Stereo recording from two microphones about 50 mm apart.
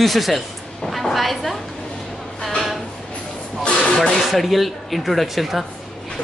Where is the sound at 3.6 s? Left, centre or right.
Centre.